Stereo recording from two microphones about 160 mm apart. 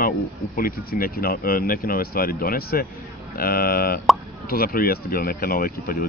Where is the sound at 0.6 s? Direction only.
65° left (ahead or behind).